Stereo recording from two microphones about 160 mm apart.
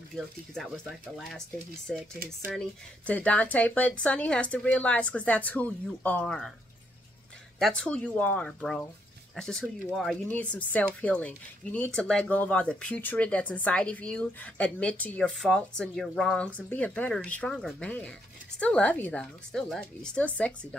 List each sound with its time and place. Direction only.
0.1 s speech: centre (ahead or behind)
3.1 s speech: 10° left (ahead or behind)
7.5 s speech: 5° left (ahead or behind)